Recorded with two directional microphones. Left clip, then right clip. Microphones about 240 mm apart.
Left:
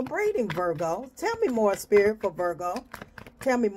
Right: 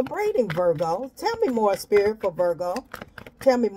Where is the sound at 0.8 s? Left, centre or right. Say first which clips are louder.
Right 3 dB; centre.